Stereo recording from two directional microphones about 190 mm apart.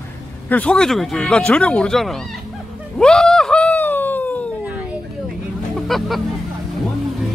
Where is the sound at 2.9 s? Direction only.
5° left (ahead or behind).